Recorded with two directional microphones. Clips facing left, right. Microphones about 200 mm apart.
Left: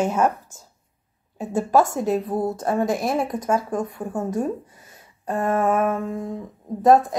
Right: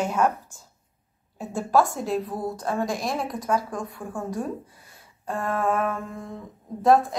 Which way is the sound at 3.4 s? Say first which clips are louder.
Left 4 dB; 45° left (ahead or behind).